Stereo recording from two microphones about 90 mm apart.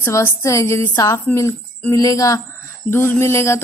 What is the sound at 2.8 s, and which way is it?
Speech, 25° left (ahead or behind).